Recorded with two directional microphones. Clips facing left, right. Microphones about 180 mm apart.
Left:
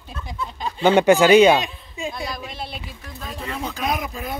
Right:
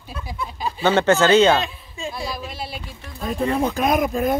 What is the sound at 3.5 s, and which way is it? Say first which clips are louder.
Speech: right 5 dB; 50° right (ahead or behind).